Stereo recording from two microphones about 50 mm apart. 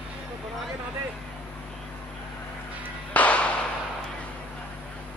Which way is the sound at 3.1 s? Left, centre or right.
Left.